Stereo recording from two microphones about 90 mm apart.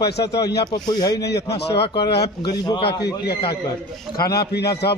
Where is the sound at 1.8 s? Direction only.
55° left (ahead or behind).